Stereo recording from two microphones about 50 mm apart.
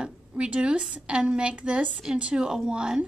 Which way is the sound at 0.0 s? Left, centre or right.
Centre.